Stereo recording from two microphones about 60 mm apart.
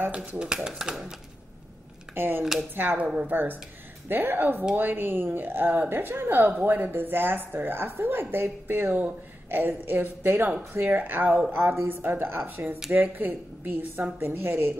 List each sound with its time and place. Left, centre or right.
0.7 s speech: centre
2.1 s speech: right